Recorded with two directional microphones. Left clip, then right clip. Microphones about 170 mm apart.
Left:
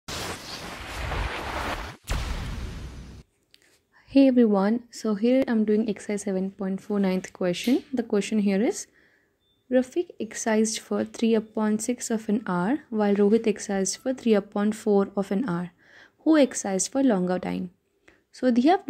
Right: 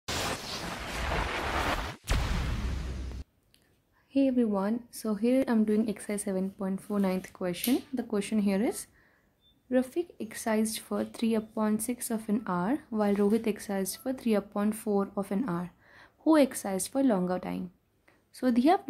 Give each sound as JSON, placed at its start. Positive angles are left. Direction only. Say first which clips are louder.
{"t": 1.4, "sound": "a sound", "louder": "even", "side_deg": 0}
{"t": 4.1, "sound": "speech", "louder": "left 8 dB", "side_deg": 30}
{"t": 5.6, "sound": "a woman's voice", "louder": "left 5 dB", "side_deg": 0}
{"t": 5.9, "sound": "speech", "louder": "left 5 dB", "side_deg": 15}
{"t": 18.3, "sound": "speech", "louder": "left 4 dB", "side_deg": 10}